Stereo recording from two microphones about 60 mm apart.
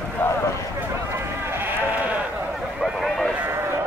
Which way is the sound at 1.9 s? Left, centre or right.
Right.